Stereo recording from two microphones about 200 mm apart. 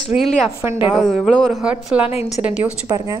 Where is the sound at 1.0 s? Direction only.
Centre (ahead or behind).